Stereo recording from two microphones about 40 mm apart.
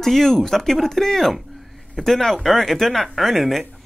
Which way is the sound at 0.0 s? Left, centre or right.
Centre.